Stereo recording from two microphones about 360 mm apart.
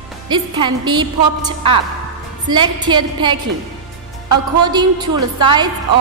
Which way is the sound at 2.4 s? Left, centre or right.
Centre.